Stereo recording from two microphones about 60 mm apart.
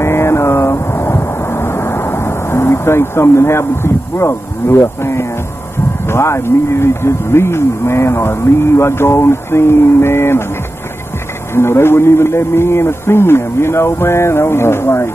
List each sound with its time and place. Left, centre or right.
0.0 s vehicle: left
6.0 s speech: left
11.5 s speech: left